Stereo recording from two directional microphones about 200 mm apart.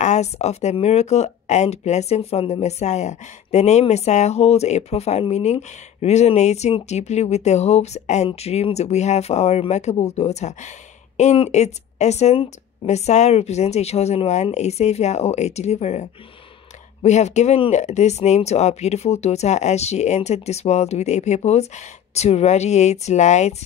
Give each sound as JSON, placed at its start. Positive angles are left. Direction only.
{"t": 0.0, "sound": "speech", "side_deg": 35}